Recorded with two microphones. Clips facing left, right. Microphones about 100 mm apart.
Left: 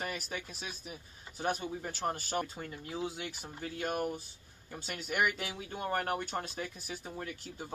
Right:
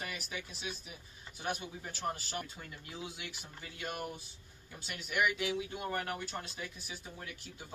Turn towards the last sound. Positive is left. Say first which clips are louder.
# left 6 dB
turn(degrees=40)  # may be behind; listen again after turning